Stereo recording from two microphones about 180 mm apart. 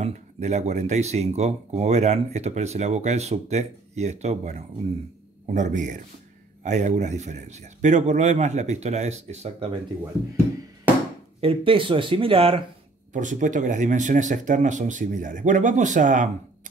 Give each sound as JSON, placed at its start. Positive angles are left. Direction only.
{"t": 0.0, "sound": "speech", "side_deg": -40}
{"t": 11.4, "sound": "speech", "side_deg": -30}
{"t": 13.1, "sound": "speech", "side_deg": -45}